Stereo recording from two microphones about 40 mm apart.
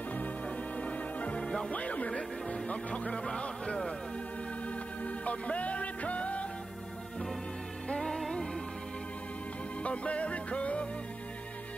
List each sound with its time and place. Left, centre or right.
0.5 s music: left
1.4 s music: centre
1.7 s speech: left
4.6 s music: left
7.9 s music: centre
9.8 s music: left